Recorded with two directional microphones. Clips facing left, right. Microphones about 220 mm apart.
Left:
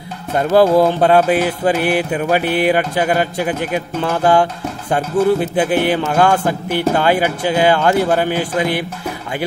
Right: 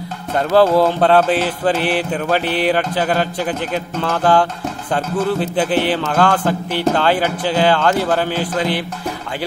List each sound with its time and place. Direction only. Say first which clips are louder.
0.4 s music: left 1 dB; 15° left (ahead or behind)